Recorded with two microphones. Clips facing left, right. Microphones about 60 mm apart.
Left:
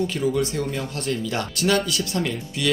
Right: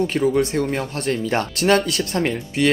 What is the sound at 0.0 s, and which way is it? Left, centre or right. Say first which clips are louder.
Speech: right 4 dB; right.